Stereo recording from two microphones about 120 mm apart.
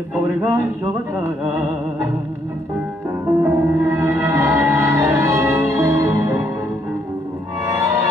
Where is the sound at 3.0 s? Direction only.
20° right (ahead or behind).